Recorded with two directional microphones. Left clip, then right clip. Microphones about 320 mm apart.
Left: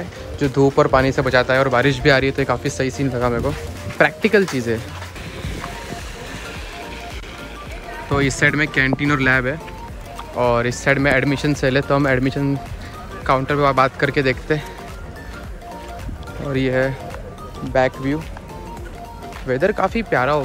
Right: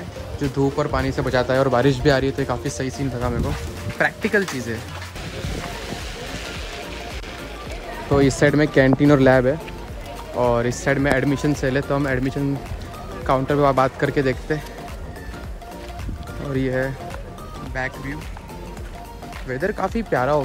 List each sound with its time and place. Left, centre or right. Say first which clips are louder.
0.4 s speech: left 7 dB; centre
5.4 s music: even; centre
8.1 s speech: even; centre
19.4 s speech: left 6 dB; centre